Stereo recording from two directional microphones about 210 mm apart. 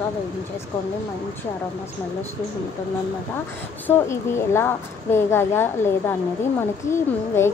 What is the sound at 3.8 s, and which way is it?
A woman's voice, 10° left (ahead or behind).